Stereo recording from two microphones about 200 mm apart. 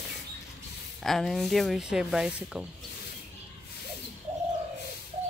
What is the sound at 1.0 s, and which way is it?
Speech, centre (ahead or behind).